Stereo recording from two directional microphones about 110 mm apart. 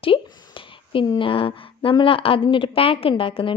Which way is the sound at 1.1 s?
50° left (ahead or behind).